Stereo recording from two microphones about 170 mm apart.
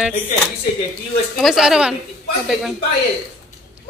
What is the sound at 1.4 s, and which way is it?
Speech, centre (ahead or behind).